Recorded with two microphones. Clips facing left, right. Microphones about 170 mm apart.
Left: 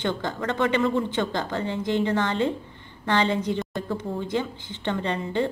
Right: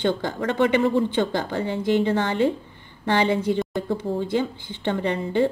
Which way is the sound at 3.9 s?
30° right (ahead or behind).